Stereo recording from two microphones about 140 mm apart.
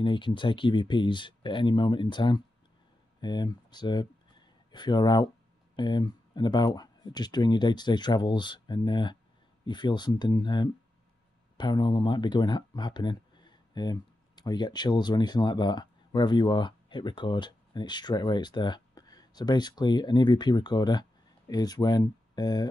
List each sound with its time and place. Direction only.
0.0 s speech: 35° left (ahead or behind)